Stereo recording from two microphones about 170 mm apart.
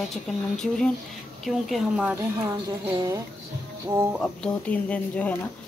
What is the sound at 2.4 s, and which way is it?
Speech, 20° right (ahead or behind).